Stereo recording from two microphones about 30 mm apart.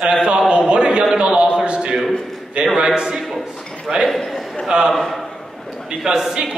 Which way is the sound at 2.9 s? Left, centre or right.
Centre.